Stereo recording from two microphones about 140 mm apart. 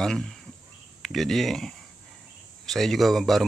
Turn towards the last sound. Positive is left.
turn(degrees=0)  # may be behind; listen again after turning